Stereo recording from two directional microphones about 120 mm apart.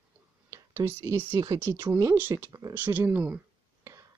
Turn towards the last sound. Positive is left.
turn(degrees=-15)  # may be behind; listen again after turning